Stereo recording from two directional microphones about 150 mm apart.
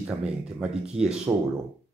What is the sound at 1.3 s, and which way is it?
Speech, 20° right (ahead or behind).